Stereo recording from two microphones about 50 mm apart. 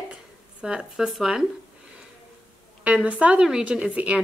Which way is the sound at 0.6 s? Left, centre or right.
Centre.